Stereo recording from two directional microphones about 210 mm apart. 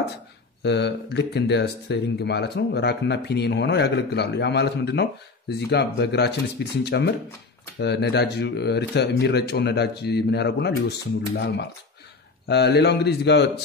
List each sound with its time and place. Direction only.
0.6 s speech: 55° left (ahead or behind)